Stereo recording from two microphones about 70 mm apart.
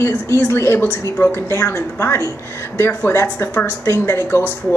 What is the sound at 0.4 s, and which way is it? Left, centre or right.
A woman's voice, left.